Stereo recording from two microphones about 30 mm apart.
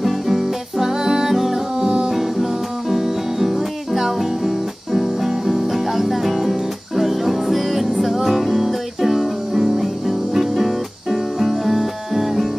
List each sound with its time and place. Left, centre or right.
0.0 s music: centre